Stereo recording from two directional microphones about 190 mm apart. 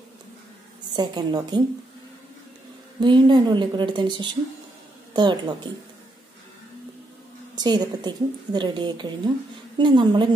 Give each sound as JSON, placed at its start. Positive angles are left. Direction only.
{"t": 0.9, "sound": "a woman's voice", "side_deg": -25}
{"t": 3.0, "sound": "a woman's voice", "side_deg": -25}
{"t": 7.5, "sound": "a woman's voice", "side_deg": -20}